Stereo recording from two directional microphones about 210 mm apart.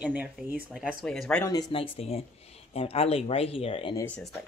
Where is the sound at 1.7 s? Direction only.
25° left (ahead or behind).